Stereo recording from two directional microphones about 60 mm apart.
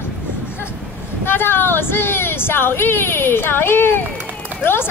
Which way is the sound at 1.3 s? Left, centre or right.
Left.